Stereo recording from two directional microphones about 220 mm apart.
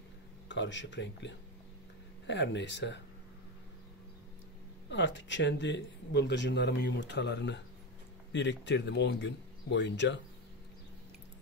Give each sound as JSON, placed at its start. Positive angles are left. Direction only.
{"t": 0.5, "sound": "speech", "side_deg": 55}
{"t": 4.8, "sound": "speech", "side_deg": 55}